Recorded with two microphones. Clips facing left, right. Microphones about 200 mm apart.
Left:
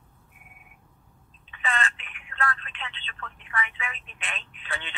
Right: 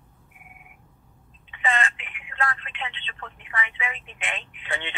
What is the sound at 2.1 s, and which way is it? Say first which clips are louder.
Telephone: right 1 dB; 20° right (ahead or behind).